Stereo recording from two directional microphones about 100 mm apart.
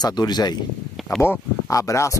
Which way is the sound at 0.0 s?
45° left (ahead or behind).